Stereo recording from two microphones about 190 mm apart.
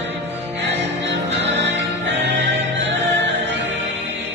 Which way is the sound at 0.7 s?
70° right (ahead or behind).